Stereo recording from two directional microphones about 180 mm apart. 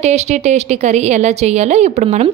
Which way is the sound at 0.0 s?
40° right (ahead or behind).